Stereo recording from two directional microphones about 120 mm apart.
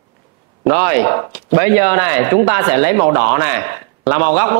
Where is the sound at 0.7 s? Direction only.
20° right (ahead or behind).